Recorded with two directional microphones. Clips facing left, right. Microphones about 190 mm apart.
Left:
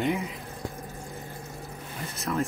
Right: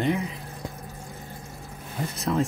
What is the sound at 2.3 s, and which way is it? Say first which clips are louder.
Speech: right 3 dB; 25° right (ahead or behind).